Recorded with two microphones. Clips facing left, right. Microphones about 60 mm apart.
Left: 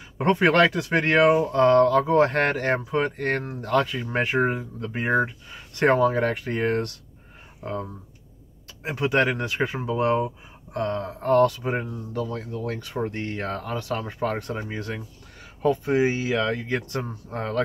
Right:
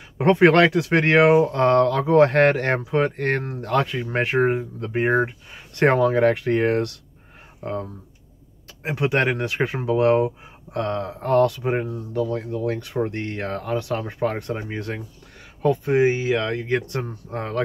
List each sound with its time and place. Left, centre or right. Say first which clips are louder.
0.2 s speech: right 4 dB; right
9.1 s speech: left 1 dB; right